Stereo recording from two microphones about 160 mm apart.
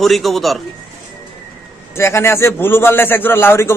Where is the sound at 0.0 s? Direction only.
Centre (ahead or behind).